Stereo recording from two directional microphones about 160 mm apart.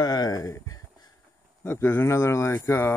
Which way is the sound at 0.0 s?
25° left (ahead or behind).